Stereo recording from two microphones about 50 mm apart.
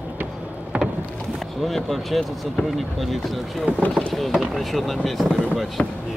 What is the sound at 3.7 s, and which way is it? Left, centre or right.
Speech, right.